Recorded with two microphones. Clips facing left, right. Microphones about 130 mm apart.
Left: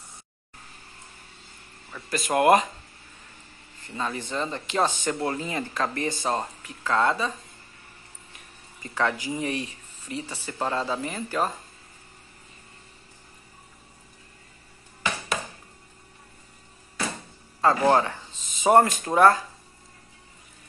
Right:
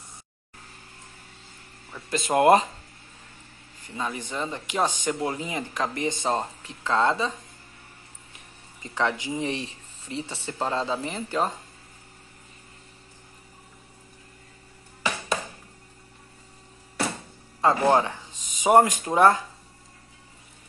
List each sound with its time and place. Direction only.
1.9 s speech: 20° right (ahead or behind)
3.8 s speech: 15° right (ahead or behind)
8.8 s speech: 20° right (ahead or behind)
17.6 s speech: 20° right (ahead or behind)